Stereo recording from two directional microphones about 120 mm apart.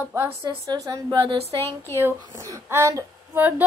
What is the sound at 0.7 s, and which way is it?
Speech, 30° right (ahead or behind).